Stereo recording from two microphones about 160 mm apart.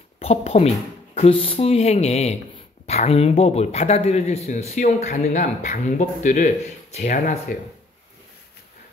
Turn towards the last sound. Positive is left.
turn(degrees=55)  # may be behind; listen again after turning